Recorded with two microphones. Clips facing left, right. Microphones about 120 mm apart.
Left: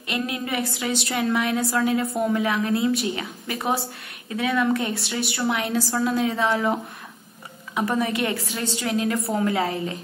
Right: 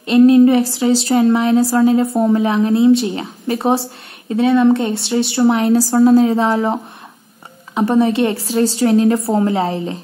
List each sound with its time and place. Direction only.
0.0 s a woman's voice: 30° right (ahead or behind)